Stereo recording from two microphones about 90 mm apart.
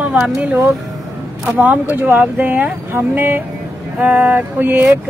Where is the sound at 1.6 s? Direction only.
20° right (ahead or behind).